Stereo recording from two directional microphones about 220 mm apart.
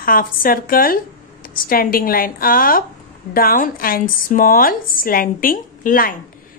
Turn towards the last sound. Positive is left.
turn(degrees=40)  # may be behind; listen again after turning